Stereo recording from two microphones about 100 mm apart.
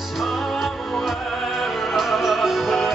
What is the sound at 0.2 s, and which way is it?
Music, centre (ahead or behind).